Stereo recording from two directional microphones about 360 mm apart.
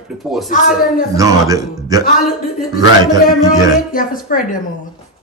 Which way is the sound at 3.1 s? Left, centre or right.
Centre.